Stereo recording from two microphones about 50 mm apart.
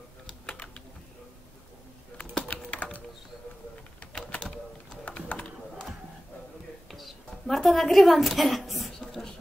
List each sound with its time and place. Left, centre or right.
0.5 s typing: centre
2.1 s typing: left
5.0 s typing: left
6.9 s a sound: centre